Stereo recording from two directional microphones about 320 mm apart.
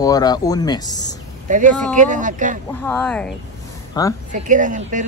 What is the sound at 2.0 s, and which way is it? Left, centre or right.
Speech, right.